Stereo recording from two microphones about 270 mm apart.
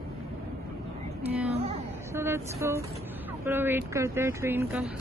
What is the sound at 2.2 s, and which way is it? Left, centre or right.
Speech, centre.